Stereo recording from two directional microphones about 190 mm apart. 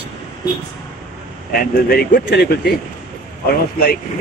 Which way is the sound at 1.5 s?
55° left (ahead or behind).